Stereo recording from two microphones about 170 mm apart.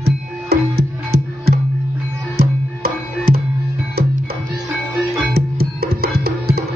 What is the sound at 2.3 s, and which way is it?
Music, 60° right (ahead or behind).